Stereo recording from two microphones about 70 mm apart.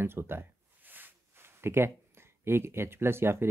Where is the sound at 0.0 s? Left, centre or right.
Right.